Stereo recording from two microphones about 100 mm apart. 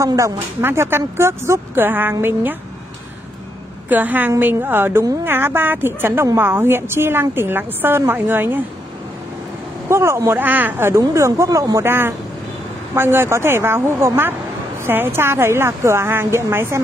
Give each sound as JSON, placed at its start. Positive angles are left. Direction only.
{"t": 0.0, "sound": "speech", "side_deg": -30}
{"t": 0.6, "sound": "a woman's voice", "side_deg": -20}
{"t": 3.9, "sound": "a woman's voice", "side_deg": -20}
{"t": 9.8, "sound": "a woman's voice", "side_deg": -25}
{"t": 11.8, "sound": "a woman's voice", "side_deg": -20}